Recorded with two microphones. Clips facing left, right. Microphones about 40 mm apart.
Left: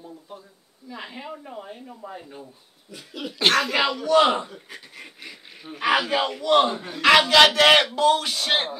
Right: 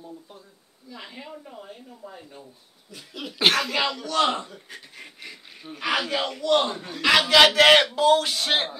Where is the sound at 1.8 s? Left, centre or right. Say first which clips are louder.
Left 4 dB; left.